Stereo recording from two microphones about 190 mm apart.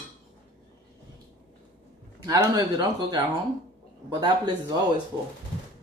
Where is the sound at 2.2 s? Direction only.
15° right (ahead or behind).